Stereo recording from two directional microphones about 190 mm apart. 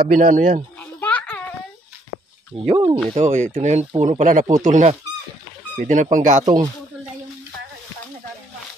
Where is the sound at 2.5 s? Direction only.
25° right (ahead or behind).